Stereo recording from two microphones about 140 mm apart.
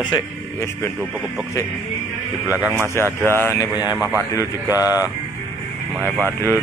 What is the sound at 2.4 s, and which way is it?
Speech, 10° right (ahead or behind).